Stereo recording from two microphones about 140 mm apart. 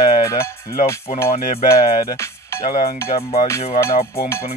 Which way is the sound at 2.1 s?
20° left (ahead or behind).